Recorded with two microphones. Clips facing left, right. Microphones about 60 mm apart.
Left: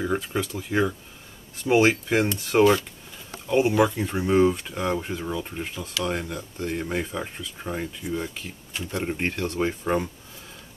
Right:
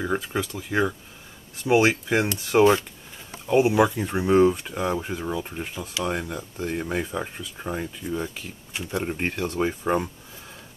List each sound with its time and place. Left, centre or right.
0.0 s speech: centre
3.4 s speech: centre
7.5 s speech: centre